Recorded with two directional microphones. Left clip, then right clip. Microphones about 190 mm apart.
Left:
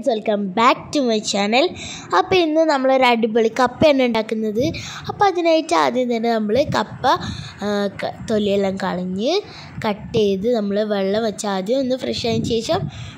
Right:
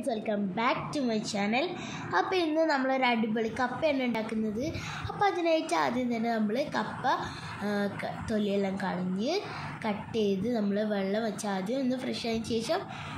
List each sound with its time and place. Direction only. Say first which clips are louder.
0.0 s a woman's voice: left 12 dB; 40° left (ahead or behind)